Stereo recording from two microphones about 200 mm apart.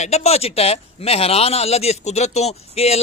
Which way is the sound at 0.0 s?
30° left (ahead or behind).